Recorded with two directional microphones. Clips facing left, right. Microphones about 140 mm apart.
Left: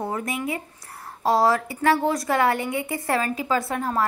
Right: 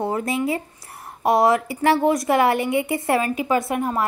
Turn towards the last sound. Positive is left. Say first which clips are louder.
# right 3 dB
turn(degrees=-20)  # may be behind; listen again after turning